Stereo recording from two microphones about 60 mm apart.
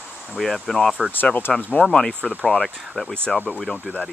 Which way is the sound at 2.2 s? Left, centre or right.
Right.